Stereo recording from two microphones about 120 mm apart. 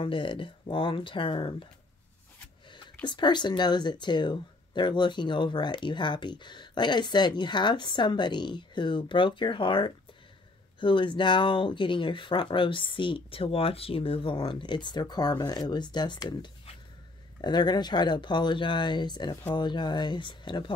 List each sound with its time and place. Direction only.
0.0 s speech: 45° left (ahead or behind)
3.1 s speech: 40° left (ahead or behind)